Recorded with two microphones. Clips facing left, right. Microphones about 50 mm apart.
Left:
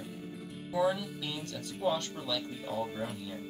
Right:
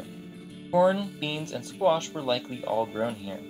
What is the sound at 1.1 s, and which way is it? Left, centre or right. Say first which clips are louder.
Speech: right 6 dB; right.